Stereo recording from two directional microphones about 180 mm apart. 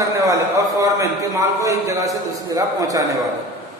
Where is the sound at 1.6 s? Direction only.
15° right (ahead or behind).